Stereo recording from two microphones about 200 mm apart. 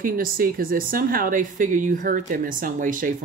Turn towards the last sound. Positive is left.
turn(degrees=-40)  # may be behind; listen again after turning